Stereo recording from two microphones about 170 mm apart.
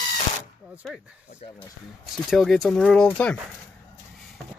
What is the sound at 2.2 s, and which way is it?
Speech, centre (ahead or behind).